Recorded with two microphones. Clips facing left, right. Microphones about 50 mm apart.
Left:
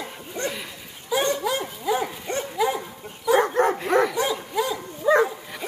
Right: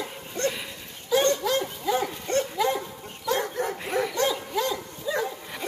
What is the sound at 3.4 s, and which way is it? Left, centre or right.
Dog, left.